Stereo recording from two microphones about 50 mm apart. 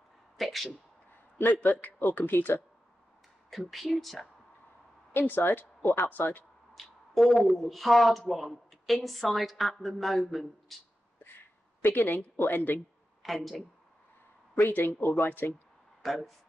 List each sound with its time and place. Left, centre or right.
0.4 s a sound: centre
1.6 s speech: left
3.4 s speech: centre
5.1 s speech: left
6.7 s speech: centre
11.2 s a sound: left
12.4 s speech: left
13.2 s speech: centre
14.7 s speech: left
16.0 s speech: centre